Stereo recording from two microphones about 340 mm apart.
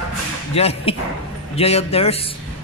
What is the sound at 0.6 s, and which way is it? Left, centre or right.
A man's voice, centre.